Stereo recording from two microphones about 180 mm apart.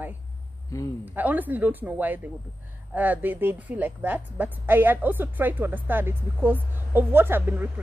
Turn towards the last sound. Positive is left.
turn(degrees=-10)  # may be behind; listen again after turning